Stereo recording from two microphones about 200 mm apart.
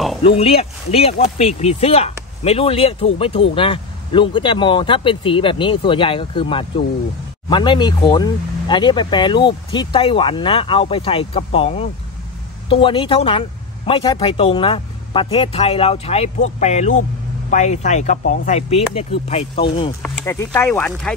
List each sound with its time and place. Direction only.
0.2 s speech: 30° left (ahead or behind)
20.0 s speech: 10° left (ahead or behind)